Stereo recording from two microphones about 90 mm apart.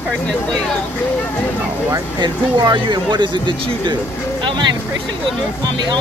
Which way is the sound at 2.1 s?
55° right (ahead or behind).